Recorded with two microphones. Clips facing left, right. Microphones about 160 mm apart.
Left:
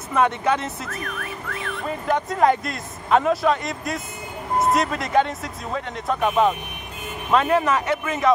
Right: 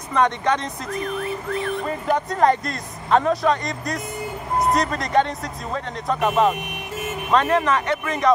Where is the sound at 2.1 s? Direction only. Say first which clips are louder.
Even; centre (ahead or behind).